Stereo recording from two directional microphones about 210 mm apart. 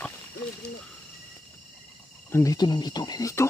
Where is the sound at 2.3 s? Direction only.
15° left (ahead or behind).